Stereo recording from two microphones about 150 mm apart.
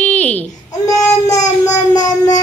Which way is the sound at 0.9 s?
20° left (ahead or behind).